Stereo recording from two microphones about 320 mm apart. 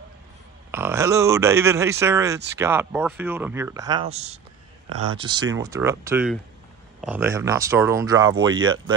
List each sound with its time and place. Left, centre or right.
0.7 s speech: centre
4.8 s speech: right
5.1 s speech: centre